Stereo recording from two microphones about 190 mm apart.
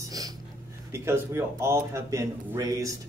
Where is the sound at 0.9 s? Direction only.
15° right (ahead or behind).